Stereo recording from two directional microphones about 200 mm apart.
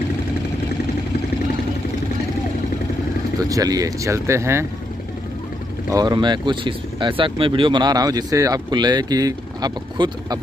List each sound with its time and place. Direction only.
3.3 s speech: 15° right (ahead or behind)
5.9 s speech: 20° right (ahead or behind)